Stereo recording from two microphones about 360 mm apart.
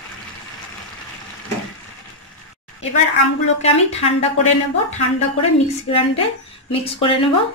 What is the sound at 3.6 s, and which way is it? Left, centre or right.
Speech, centre.